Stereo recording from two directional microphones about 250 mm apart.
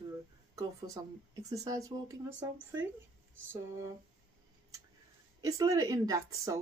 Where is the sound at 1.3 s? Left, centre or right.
Centre.